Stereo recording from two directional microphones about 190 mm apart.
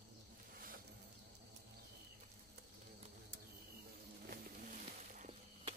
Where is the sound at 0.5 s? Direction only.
50° right (ahead or behind).